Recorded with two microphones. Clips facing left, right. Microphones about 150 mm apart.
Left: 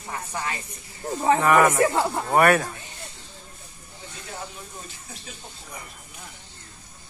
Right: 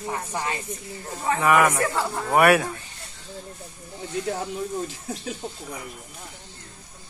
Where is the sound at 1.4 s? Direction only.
5° right (ahead or behind).